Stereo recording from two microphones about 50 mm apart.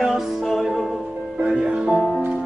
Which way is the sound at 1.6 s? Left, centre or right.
Right.